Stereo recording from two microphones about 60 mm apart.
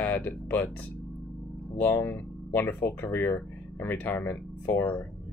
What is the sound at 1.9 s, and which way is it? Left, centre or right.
Speech, left.